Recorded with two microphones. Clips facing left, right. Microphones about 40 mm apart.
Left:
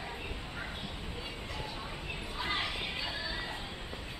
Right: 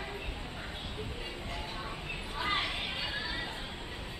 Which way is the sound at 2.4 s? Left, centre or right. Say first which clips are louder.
Right 2 dB; centre.